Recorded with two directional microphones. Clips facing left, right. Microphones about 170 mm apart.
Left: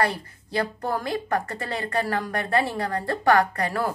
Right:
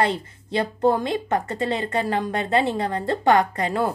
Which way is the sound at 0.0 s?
20° right (ahead or behind).